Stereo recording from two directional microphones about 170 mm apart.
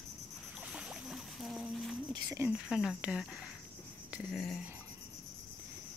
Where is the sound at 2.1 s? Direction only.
25° right (ahead or behind).